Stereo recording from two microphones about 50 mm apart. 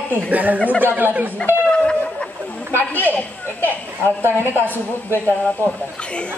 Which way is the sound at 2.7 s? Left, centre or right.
Left.